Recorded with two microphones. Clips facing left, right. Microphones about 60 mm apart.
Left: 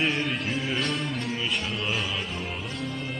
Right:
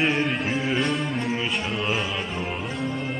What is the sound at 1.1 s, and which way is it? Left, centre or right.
Music, right.